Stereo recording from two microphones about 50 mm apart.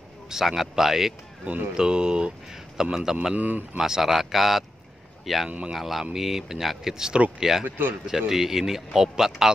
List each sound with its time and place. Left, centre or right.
0.3 s a man's voice: centre
1.8 s a man's voice: centre
3.3 s speech: right
3.7 s a man's voice: centre
7.6 s speech: right
8.3 s a man's voice: centre